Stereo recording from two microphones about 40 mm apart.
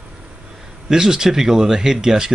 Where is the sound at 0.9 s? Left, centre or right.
Centre.